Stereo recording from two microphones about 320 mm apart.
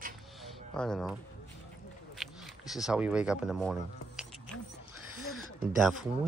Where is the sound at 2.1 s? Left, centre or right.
Centre.